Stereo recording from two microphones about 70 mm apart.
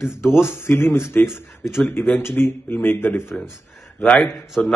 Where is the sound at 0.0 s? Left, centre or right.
Left.